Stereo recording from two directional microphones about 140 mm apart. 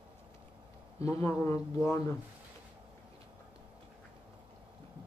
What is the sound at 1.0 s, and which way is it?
Speech, 20° left (ahead or behind).